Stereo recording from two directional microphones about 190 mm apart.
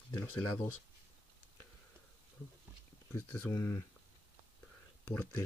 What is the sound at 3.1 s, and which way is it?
Speech, 10° left (ahead or behind).